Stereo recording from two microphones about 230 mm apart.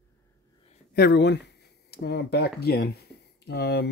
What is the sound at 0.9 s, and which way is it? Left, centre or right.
Speech, left.